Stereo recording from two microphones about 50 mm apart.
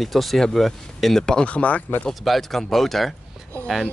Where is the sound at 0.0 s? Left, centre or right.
Centre.